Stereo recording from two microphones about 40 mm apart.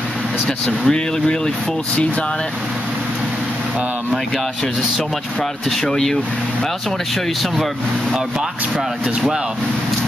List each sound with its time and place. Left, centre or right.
0.8 s speech: centre
5.9 s speech: centre